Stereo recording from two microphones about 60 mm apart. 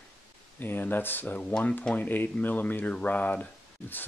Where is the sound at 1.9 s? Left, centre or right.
Left.